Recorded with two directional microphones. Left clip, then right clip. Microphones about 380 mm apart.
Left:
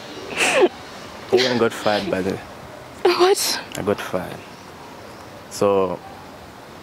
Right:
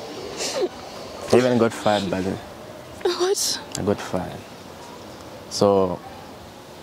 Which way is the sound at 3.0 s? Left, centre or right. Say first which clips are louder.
Left 6 dB; left.